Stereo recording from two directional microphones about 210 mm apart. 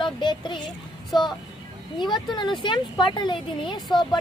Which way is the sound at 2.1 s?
20° left (ahead or behind).